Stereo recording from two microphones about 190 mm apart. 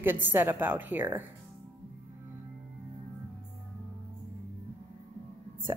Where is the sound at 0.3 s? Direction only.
10° right (ahead or behind).